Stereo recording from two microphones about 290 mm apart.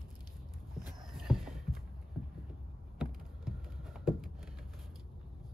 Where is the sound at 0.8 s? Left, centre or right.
Centre.